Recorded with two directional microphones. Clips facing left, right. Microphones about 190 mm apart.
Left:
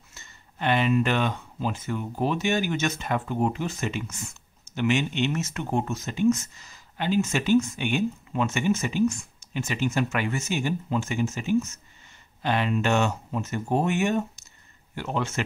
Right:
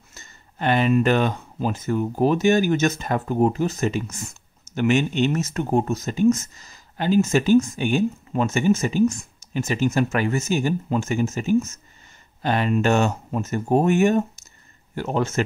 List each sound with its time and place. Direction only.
0.1 s speech: 40° right (ahead or behind)